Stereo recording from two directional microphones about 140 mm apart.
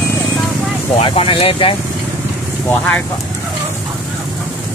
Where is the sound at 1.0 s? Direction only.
40° left (ahead or behind).